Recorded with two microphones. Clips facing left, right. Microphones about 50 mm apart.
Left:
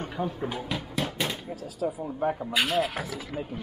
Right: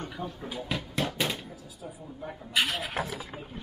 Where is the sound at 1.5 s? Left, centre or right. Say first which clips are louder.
Left 12 dB; left.